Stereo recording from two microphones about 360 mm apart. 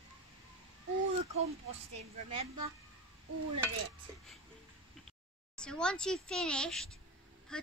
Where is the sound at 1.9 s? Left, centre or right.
Centre.